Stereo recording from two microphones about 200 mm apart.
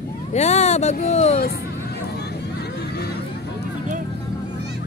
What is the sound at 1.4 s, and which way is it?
Chatter, 50° left (ahead or behind).